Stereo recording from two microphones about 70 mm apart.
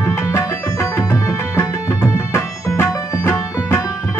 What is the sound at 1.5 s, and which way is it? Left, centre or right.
Tabla, left.